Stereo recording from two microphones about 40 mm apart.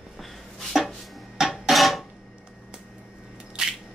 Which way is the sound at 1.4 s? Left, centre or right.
Centre.